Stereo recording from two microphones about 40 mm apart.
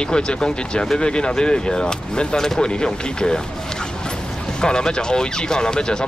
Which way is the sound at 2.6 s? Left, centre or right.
Left.